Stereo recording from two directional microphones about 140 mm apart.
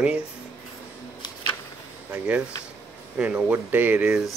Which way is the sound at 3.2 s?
10° right (ahead or behind).